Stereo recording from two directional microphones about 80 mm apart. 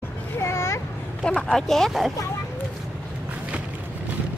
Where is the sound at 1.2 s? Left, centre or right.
Centre.